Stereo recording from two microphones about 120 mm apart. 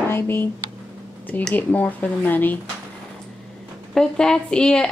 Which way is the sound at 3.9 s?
5° left (ahead or behind).